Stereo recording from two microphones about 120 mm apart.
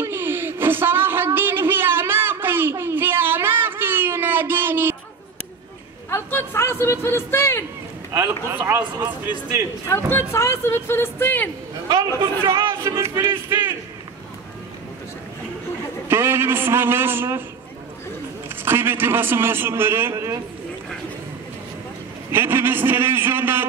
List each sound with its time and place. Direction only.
0.0 s a sound: 20° right (ahead or behind)
6.0 s a man's voice: 20° left (ahead or behind)
8.5 s a man's voice: 20° right (ahead or behind)
9.8 s speech: 20° left (ahead or behind)
11.9 s a man's voice: 25° right (ahead or behind)
16.1 s a man's voice: 20° right (ahead or behind)
18.6 s a man's voice: 20° right (ahead or behind)
22.3 s a man's voice: 20° right (ahead or behind)